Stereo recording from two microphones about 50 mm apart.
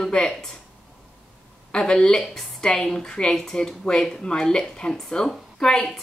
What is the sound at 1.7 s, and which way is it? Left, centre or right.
Speech, centre.